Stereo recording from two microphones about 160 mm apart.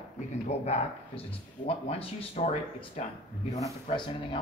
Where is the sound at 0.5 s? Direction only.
40° left (ahead or behind).